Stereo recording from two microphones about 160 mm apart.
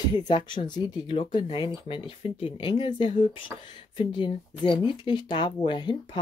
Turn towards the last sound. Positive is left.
turn(degrees=30)  # may be behind; listen again after turning